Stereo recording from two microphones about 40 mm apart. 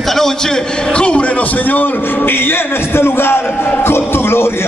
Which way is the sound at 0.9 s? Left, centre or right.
Left.